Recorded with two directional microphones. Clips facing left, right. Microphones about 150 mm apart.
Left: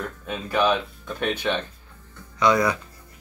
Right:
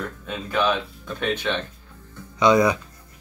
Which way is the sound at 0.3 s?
10° left (ahead or behind).